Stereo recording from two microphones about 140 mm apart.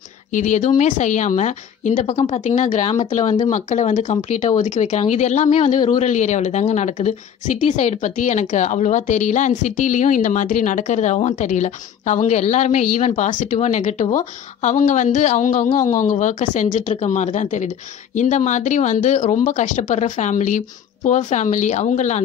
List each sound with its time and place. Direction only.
0.3 s speech: 60° left (ahead or behind)